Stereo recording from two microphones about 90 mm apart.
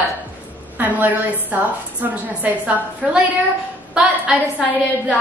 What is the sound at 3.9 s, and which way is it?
Speech, 10° right (ahead or behind).